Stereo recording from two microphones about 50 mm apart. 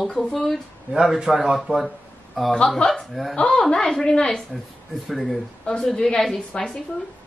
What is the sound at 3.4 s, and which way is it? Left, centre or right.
A woman's voice, centre.